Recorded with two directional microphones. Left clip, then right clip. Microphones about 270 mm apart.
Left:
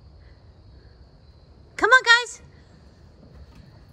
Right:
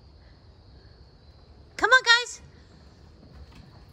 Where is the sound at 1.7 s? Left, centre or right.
Centre.